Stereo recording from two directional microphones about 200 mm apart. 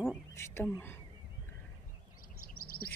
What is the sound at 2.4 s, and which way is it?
Bird, 45° left (ahead or behind).